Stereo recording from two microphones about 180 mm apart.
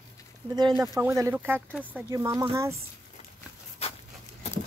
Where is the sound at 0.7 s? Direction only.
15° right (ahead or behind).